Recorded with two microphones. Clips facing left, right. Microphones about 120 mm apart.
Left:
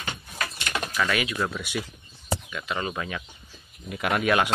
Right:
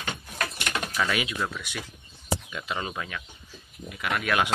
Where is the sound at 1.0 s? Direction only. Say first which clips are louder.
Left 2 dB; 15° right (ahead or behind).